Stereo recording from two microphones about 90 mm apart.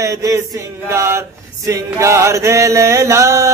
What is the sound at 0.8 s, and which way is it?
Male singing, 30° right (ahead or behind).